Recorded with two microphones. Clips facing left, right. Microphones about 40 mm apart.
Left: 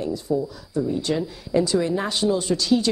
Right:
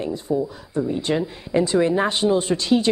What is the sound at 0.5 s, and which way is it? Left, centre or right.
Speech, right.